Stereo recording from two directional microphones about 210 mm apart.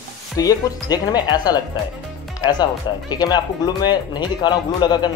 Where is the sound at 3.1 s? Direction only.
20° left (ahead or behind).